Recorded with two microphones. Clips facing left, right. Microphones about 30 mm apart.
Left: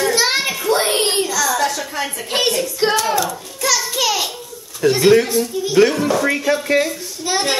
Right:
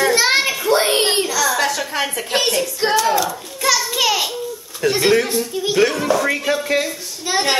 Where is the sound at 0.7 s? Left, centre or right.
Centre.